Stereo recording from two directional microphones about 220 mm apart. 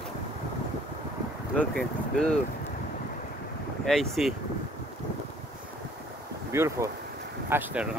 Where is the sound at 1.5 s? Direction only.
5° left (ahead or behind).